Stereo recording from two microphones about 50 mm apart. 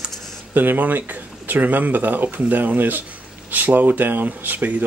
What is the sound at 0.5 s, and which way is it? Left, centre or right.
Speech, right.